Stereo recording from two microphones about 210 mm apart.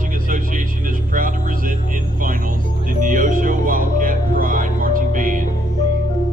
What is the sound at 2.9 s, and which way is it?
Music, 40° right (ahead or behind).